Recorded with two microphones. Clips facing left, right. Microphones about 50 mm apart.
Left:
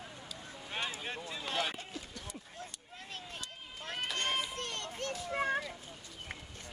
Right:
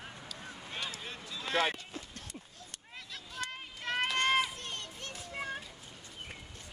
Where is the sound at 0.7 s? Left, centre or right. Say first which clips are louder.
Left 3 dB; left.